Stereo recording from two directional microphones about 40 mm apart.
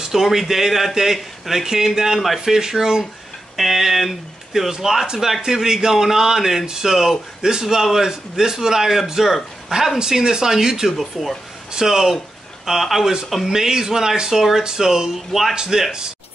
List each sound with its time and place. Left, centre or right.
0.0 s speech: centre
2.4 s speech: centre